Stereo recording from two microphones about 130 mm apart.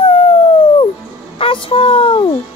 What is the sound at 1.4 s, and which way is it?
Speech, 45° left (ahead or behind).